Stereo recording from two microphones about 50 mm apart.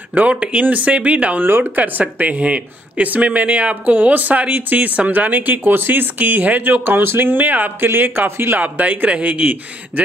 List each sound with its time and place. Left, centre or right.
0.1 s speech: right
1.4 s speech: right
8.5 s speech: right